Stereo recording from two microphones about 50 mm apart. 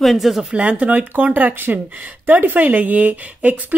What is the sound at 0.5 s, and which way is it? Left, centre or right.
A woman's voice, right.